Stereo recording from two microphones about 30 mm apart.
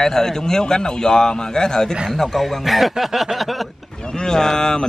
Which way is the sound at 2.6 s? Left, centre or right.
Centre.